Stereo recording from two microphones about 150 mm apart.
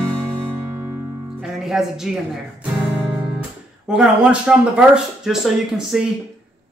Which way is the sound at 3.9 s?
5° right (ahead or behind).